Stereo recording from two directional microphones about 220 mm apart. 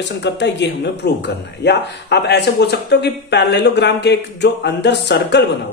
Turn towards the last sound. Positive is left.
turn(degrees=50)  # may be behind; listen again after turning